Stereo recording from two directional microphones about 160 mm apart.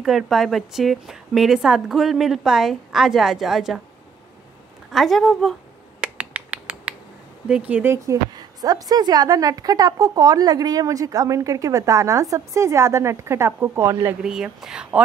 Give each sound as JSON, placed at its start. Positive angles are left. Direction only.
{"t": 0.0, "sound": "a woman's voice", "side_deg": 0}
{"t": 4.9, "sound": "finger snapping", "side_deg": 0}
{"t": 7.4, "sound": "a woman's voice", "side_deg": -10}
{"t": 14.2, "sound": "a woman's voice", "side_deg": -5}